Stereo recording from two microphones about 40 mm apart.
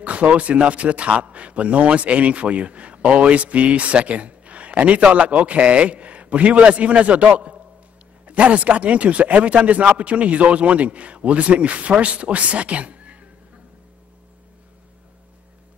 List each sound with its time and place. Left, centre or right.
0.0 s a man's voice: right